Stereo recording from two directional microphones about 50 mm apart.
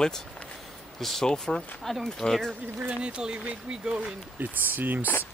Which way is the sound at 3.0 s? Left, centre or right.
Centre.